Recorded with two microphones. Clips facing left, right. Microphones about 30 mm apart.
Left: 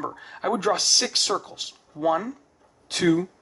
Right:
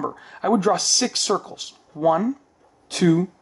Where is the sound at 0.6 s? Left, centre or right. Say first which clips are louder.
Right 2 dB; left.